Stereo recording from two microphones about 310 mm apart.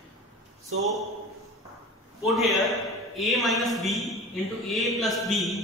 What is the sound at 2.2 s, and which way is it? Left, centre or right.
A man's voice, centre.